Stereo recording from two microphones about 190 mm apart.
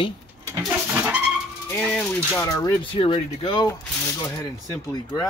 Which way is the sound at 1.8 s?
5° left (ahead or behind).